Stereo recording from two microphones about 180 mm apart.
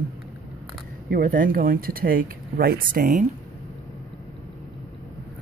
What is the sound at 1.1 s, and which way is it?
Speech, 50° right (ahead or behind).